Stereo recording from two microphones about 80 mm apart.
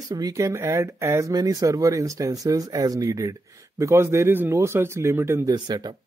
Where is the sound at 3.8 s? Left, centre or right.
Right.